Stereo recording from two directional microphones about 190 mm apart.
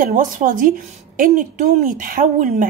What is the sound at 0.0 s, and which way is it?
A woman's voice, 45° right (ahead or behind).